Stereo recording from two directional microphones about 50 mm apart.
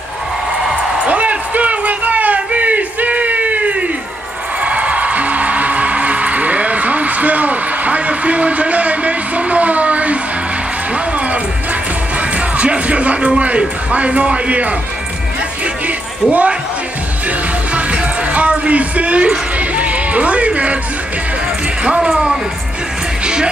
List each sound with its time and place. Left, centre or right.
1.0 s a sound: right
4.6 s music: right
11.1 s music: right
12.2 s speech: right
16.3 s speech: right
17.7 s music: right
21.8 s speech: centre
23.2 s music: centre